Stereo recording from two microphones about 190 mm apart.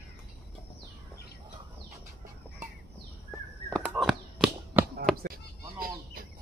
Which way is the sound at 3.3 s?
Centre (ahead or behind).